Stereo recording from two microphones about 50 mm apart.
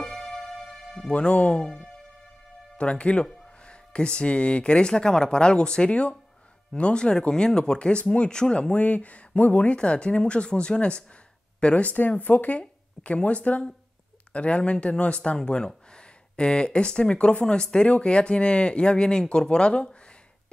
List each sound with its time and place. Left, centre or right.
0.0 s music: centre
1.1 s speech: left
2.8 s speech: left
9.8 s speech: centre